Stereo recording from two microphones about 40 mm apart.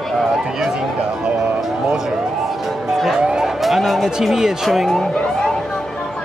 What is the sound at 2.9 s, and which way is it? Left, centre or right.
Speech, centre.